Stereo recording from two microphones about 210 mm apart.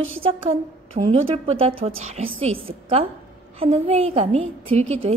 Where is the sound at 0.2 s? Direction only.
25° right (ahead or behind).